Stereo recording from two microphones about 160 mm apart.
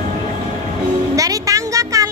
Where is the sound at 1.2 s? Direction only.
20° right (ahead or behind).